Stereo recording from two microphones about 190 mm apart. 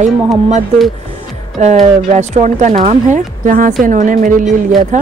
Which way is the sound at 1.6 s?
35° right (ahead or behind).